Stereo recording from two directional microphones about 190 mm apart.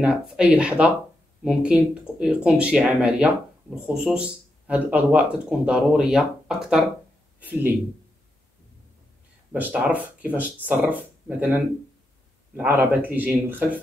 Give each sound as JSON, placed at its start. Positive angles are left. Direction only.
{"t": 0.0, "sound": "speech", "side_deg": -5}
{"t": 9.5, "sound": "speech", "side_deg": -10}